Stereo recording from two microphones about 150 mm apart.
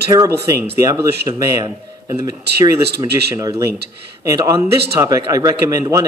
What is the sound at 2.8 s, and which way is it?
Speech, 90° right.